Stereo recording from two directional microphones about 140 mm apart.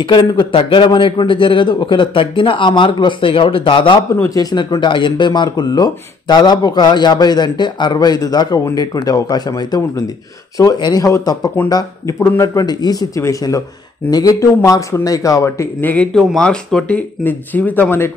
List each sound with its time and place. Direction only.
0.0 s a man's voice: 35° left (ahead or behind)
4.1 s a man's voice: 20° left (ahead or behind)